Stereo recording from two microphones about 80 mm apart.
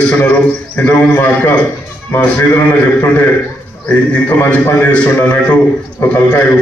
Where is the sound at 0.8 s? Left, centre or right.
Left.